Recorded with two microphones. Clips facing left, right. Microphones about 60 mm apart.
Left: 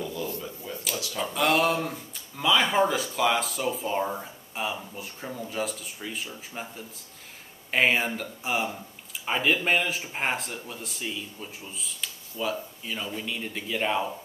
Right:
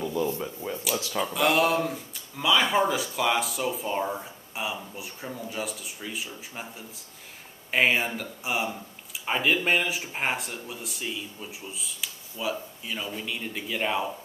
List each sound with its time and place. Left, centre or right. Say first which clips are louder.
0.0 s a sound: right 5 dB; right
0.9 s speech: right 4 dB; right
1.2 s speech: even; centre
7.7 s speech: even; centre